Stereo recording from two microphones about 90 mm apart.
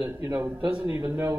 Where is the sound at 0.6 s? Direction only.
15° right (ahead or behind).